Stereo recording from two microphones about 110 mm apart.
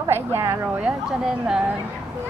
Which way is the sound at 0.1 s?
25° right (ahead or behind).